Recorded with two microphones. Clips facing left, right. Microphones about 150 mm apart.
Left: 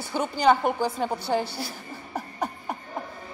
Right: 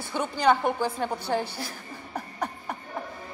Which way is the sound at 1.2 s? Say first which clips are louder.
Left 2 dB; 5° left (ahead or behind).